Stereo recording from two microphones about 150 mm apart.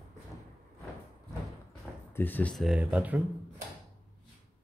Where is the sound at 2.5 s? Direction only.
5° right (ahead or behind).